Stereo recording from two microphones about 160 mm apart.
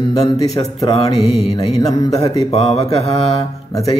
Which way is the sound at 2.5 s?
40° left (ahead or behind).